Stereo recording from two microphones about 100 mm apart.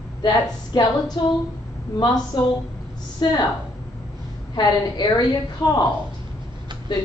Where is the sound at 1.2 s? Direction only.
45° left (ahead or behind).